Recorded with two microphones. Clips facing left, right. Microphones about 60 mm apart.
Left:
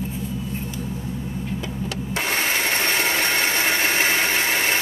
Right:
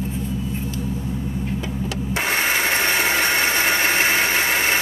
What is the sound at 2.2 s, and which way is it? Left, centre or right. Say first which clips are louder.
Tools: right 2 dB; centre.